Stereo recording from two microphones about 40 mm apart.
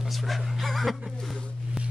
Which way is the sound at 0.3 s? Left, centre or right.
Centre.